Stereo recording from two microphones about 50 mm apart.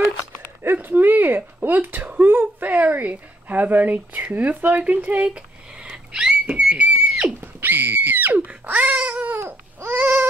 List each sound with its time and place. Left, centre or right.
0.8 s speech: right
7.3 s a sound: right
9.8 s baby cry: right